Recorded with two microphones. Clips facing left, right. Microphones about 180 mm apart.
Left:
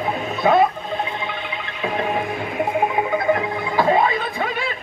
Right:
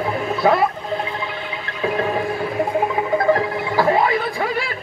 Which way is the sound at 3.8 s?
20° left (ahead or behind).